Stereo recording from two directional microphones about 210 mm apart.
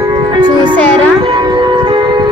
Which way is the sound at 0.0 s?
20° right (ahead or behind).